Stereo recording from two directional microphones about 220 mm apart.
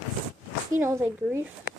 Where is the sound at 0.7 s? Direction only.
10° right (ahead or behind).